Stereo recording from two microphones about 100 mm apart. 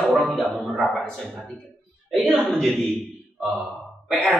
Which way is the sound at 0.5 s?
Centre (ahead or behind).